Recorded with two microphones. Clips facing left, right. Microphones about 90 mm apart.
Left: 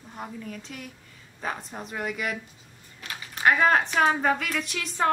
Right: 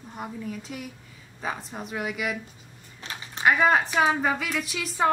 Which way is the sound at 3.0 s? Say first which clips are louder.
Even; 25° right (ahead or behind).